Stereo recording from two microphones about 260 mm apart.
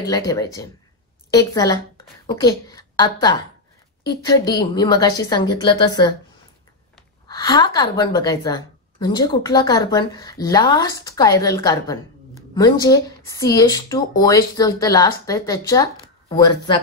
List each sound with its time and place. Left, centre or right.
0.0 s a woman's voice: centre
7.2 s a woman's voice: centre